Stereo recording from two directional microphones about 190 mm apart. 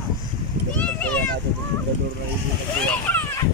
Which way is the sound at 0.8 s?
5° left (ahead or behind).